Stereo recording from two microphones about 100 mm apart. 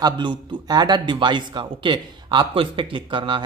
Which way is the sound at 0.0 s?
45° right (ahead or behind).